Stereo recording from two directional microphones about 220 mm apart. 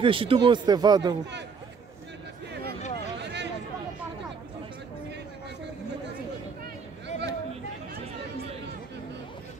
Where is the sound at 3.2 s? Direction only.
50° right (ahead or behind).